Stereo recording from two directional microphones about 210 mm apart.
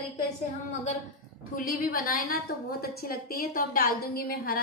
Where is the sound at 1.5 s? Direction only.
45° left (ahead or behind).